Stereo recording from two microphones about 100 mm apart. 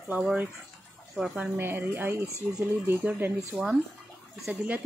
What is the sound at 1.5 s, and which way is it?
Speech, 20° right (ahead or behind).